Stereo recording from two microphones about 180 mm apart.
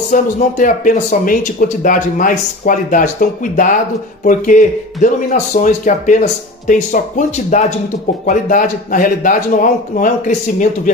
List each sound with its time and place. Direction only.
0.1 s speech: 45° left (ahead or behind)